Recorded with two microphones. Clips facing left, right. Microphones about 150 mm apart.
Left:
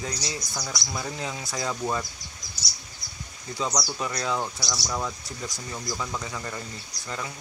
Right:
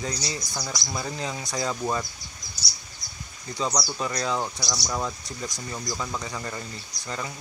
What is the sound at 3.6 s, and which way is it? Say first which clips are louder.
Speech: right 1 dB; centre (ahead or behind).